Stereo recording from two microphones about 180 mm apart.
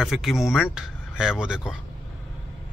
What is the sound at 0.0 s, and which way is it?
Speech, centre (ahead or behind).